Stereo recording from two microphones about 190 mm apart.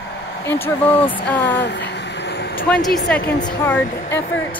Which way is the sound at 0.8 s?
30° left (ahead or behind).